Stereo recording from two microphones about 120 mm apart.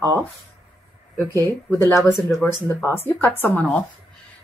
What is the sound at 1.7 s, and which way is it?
Speech, 20° left (ahead or behind).